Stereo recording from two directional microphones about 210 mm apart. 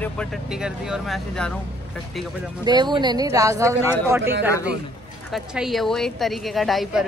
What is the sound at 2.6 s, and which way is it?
Speech, 20° right (ahead or behind).